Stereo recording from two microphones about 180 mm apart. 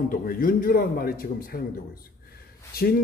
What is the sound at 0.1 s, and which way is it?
A man's voice, 55° left (ahead or behind).